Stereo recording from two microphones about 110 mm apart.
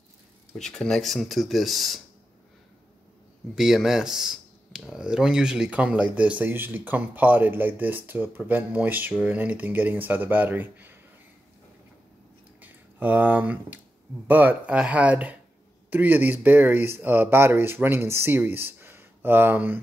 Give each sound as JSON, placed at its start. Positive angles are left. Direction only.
{"t": 0.6, "sound": "speech", "side_deg": 5}
{"t": 3.5, "sound": "speech", "side_deg": -5}
{"t": 12.5, "sound": "a sound", "side_deg": -15}
{"t": 14.2, "sound": "speech", "side_deg": -15}